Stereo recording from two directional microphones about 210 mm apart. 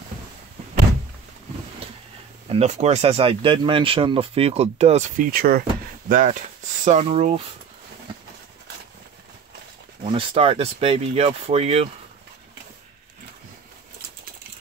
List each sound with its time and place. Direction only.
2.5 s speech: 30° right (ahead or behind)
10.0 s speech: 25° right (ahead or behind)